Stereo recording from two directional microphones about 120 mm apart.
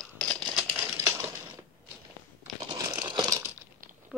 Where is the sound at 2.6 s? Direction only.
35° right (ahead or behind).